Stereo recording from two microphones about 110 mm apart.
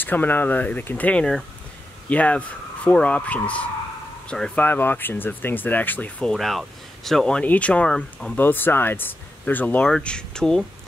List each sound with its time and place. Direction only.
0.0 s speech: 15° left (ahead or behind)
6.3 s speech: centre (ahead or behind)
8.4 s speech: 20° left (ahead or behind)